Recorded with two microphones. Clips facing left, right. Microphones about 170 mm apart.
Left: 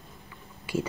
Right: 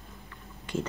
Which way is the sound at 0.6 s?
10° left (ahead or behind).